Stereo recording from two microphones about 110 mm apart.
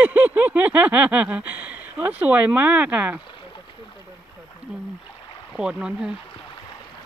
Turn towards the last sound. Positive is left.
turn(degrees=-10)  # may be behind; listen again after turning